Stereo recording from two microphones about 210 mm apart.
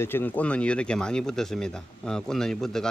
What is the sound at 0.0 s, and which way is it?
Speech, 10° left (ahead or behind).